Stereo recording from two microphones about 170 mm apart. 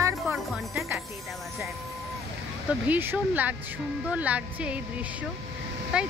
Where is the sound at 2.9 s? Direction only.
10° right (ahead or behind).